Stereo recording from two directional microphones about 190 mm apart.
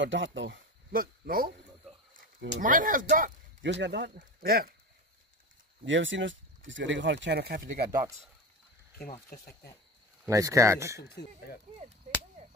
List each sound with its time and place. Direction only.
0.0 s speech: 75° right (ahead or behind)
0.9 s speech: 50° right (ahead or behind)
2.6 s speech: 45° right (ahead or behind)
3.6 s speech: 70° right (ahead or behind)
4.2 s speech: 50° right (ahead or behind)
5.9 s speech: 75° right (ahead or behind); by 7.9 s 45° right (ahead or behind)
10.2 s speech: 15° right (ahead or behind)
11.0 s speech: 55° left (ahead or behind)